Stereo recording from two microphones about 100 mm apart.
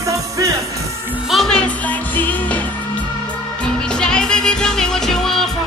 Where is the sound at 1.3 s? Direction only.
5° left (ahead or behind).